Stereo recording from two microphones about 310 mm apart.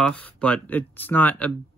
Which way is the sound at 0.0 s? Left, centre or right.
Centre.